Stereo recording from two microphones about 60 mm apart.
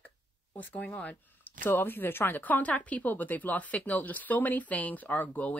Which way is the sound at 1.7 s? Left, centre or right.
Left.